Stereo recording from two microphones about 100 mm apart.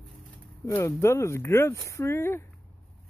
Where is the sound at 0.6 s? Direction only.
30° left (ahead or behind).